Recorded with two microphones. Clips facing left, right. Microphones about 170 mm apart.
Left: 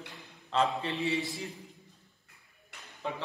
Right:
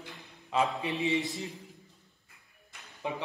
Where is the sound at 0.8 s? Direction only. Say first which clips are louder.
Right 2 dB; 15° right (ahead or behind).